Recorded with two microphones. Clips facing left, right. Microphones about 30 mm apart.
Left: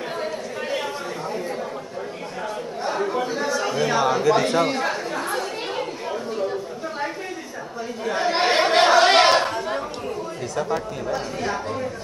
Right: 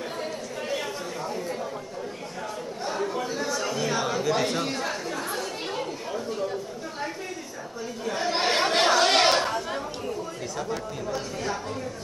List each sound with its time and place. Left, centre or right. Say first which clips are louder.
0.2 s a sound: left 4 dB; centre
2.8 s chatter: left 5 dB; centre
4.2 s speech: left 6 dB; centre
4.6 s chatter: left 7 dB; centre
10.5 s speech: left 8 dB; centre